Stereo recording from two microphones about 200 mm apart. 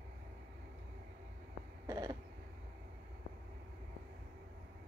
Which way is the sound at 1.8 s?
20° right (ahead or behind).